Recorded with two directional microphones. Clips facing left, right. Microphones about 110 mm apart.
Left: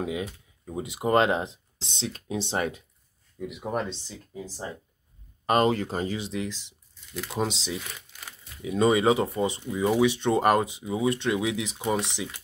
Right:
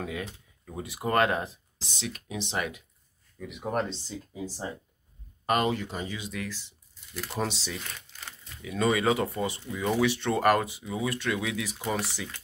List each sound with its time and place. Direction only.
0.0 s speech: 15° left (ahead or behind); by 2.8 s 35° left (ahead or behind)
3.4 s speech: centre (ahead or behind)
5.7 s speech: 45° left (ahead or behind); by 7.7 s 15° left (ahead or behind)
7.7 s crumpling: 5° left (ahead or behind)
8.6 s speech: 25° left (ahead or behind)